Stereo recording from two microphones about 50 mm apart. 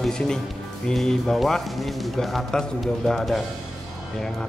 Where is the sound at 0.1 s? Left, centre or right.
Centre.